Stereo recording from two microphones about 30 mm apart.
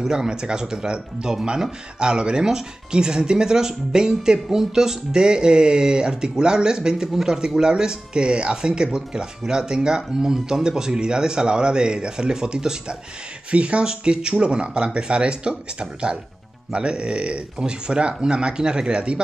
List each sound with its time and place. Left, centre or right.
0.0 s speech: centre
5.1 s speech: right
13.5 s speech: right